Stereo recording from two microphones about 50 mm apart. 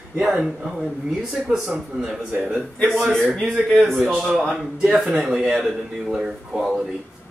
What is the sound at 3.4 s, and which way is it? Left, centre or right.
Speech, centre.